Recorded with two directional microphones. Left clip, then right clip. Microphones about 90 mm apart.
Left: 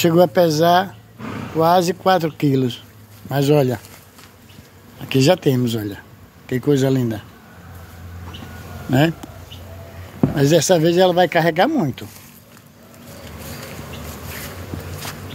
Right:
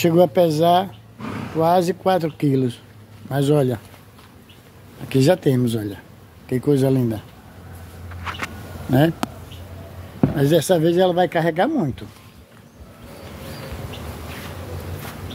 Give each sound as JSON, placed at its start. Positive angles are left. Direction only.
{"t": 0.0, "sound": "speech", "side_deg": 0}
{"t": 1.2, "sound": "a sound", "side_deg": -20}
{"t": 1.6, "sound": "speech", "side_deg": -5}
{"t": 5.0, "sound": "speech", "side_deg": 5}
{"t": 10.3, "sound": "speech", "side_deg": 20}